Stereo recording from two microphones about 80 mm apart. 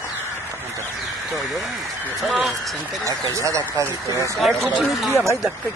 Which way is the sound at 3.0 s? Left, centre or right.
Right.